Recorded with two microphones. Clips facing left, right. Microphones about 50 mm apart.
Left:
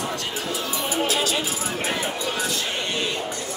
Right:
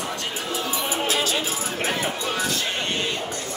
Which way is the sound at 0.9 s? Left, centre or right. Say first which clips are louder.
Left 2 dB; right.